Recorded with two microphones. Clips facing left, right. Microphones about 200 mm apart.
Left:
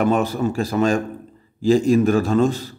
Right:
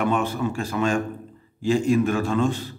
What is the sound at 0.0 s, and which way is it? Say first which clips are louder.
A man's voice: left 4 dB; 40° left (ahead or behind).